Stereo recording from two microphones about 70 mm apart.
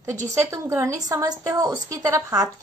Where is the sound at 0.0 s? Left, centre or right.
Right.